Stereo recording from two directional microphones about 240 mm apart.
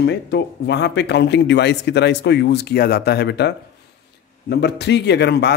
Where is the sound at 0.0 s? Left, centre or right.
Left.